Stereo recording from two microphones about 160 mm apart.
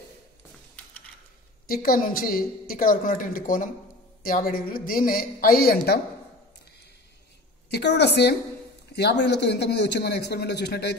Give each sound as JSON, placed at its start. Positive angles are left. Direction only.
{"t": 1.7, "sound": "a woman's voice", "side_deg": 65}
{"t": 7.7, "sound": "speech", "side_deg": 90}